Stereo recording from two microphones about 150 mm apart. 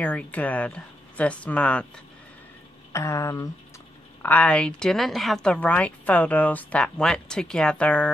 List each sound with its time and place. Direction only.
0.0 s a woman's voice: 10° left (ahead or behind)
2.9 s a woman's voice: 20° left (ahead or behind)